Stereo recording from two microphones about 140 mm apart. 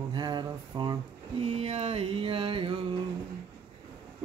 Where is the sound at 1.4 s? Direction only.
45° right (ahead or behind).